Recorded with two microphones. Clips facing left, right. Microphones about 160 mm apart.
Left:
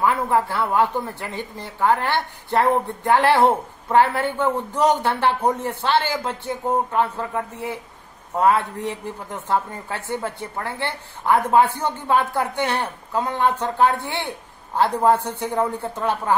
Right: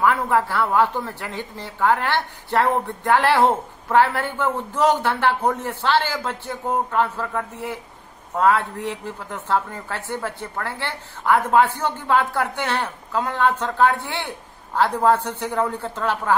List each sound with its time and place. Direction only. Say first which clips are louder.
0.0 s a man's voice: even; 15° left (ahead or behind)